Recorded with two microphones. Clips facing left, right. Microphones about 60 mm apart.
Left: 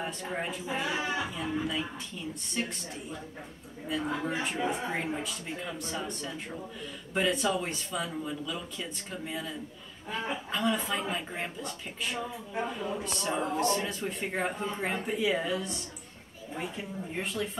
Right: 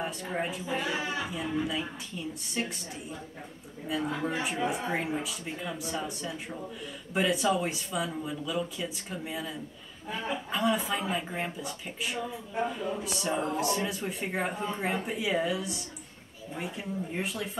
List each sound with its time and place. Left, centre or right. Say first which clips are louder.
0.0 s a man's voice: right 2 dB; centre